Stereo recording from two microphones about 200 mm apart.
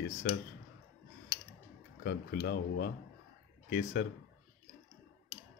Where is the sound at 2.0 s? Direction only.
50° left (ahead or behind).